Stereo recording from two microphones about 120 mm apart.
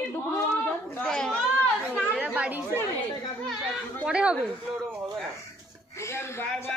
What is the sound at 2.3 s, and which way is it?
Speech, 15° right (ahead or behind).